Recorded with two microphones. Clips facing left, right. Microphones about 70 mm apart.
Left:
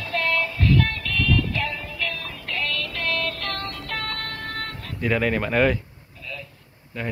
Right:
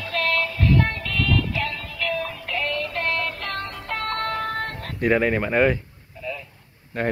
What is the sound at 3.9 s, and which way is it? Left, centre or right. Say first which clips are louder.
Music: right 6 dB; right.